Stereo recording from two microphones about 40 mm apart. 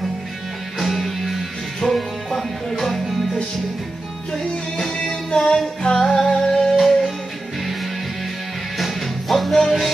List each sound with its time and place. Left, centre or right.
0.7 s music: centre
1.8 s music: left
2.8 s music: centre
4.3 s music: centre
5.9 s music: centre
6.8 s music: centre
8.7 s music: centre